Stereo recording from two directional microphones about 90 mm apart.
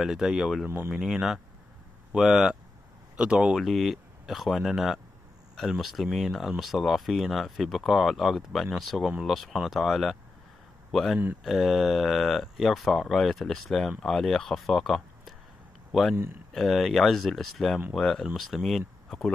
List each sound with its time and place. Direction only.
0.0 s speech: 5° right (ahead or behind)
0.7 s speech: 30° right (ahead or behind)
0.9 s speech: 5° right (ahead or behind)